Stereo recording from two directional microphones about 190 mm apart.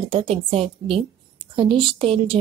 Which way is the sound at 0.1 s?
30° right (ahead or behind).